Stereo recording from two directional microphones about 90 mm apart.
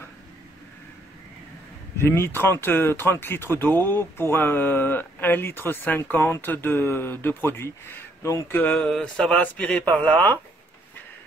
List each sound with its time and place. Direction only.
2.0 s speech: 30° left (ahead or behind)
8.5 s speech: 15° left (ahead or behind)